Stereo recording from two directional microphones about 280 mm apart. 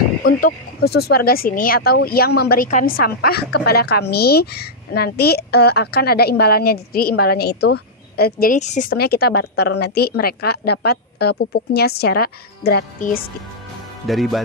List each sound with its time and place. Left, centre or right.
0.4 s a woman's voice: left
14.0 s speech: centre